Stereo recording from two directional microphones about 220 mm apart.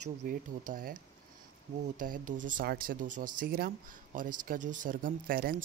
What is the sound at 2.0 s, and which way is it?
Speech, 35° right (ahead or behind).